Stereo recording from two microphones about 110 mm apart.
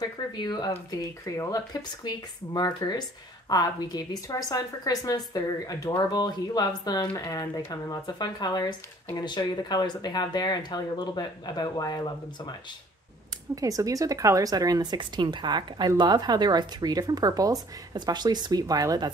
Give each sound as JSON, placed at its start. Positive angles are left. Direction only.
{"t": 0.4, "sound": "speech", "side_deg": 40}
{"t": 1.2, "sound": "speech", "side_deg": 30}
{"t": 13.6, "sound": "speech", "side_deg": -30}